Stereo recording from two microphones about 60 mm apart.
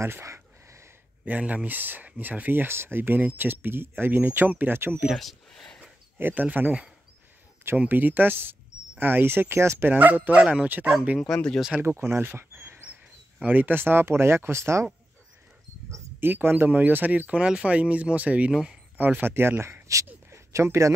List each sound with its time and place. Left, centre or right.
0.0 s a sound: right
1.4 s speech: right
5.1 s speech: centre
6.1 s speech: right
9.8 s speech: right
11.3 s speech: centre
11.8 s speech: right
12.2 s a sound: right
12.9 s speech: right
16.2 s speech: right; by 18.8 s centre
18.9 s speech: right
19.2 s speech: right
20.2 s a sound: right